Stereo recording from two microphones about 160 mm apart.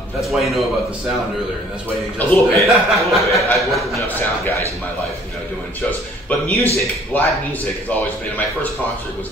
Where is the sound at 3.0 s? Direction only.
Centre (ahead or behind).